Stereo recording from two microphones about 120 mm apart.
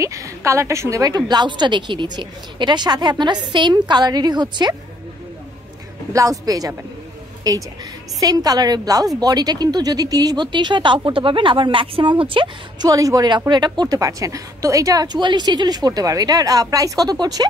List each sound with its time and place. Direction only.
0.0 s a woman's voice: 25° right (ahead or behind)
6.1 s a woman's voice: 30° right (ahead or behind)
12.9 s a woman's voice: 30° right (ahead or behind)